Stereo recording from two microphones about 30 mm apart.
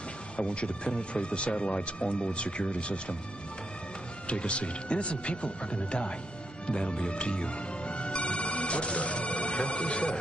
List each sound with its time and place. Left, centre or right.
0.4 s speech: left
4.3 s speech: left